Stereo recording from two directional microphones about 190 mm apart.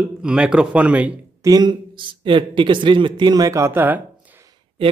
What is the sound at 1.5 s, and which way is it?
Speech, 25° right (ahead or behind).